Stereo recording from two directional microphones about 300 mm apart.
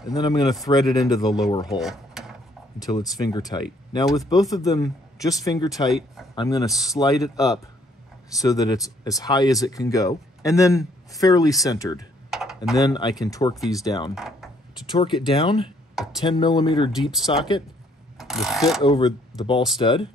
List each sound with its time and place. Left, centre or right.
0.1 s speech: centre
1.7 s drawer open or close: centre
2.8 s speech: centre
12.3 s computer keyboard: centre
12.7 s speech: centre
14.1 s speech: centre
14.9 s speech: centre
15.9 s a sound: centre
16.2 s speech: centre
16.9 s speech: centre
18.1 s mechanisms: centre
18.8 s speech: centre